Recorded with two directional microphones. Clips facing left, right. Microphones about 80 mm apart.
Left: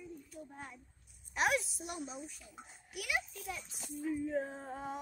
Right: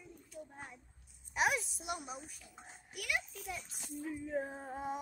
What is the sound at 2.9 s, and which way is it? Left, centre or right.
Speech, centre.